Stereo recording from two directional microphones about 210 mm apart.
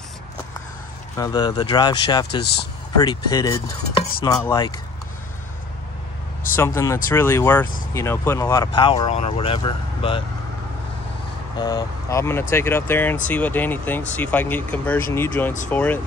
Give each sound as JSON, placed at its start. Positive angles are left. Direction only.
{"t": 1.1, "sound": "speech", "side_deg": 20}
{"t": 2.4, "sound": "speech", "side_deg": 50}
{"t": 3.0, "sound": "speech", "side_deg": 20}
{"t": 6.5, "sound": "speech", "side_deg": 10}
{"t": 11.5, "sound": "speech", "side_deg": 20}